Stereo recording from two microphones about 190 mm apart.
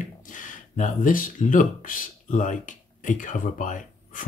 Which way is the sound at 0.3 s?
40° left (ahead or behind).